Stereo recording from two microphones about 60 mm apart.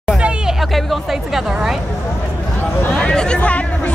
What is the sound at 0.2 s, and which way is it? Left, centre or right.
Hubbub, centre.